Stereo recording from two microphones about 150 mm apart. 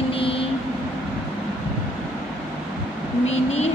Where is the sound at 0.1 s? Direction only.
40° left (ahead or behind).